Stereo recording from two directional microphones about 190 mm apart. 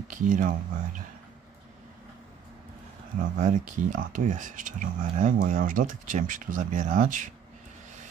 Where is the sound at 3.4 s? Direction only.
40° right (ahead or behind).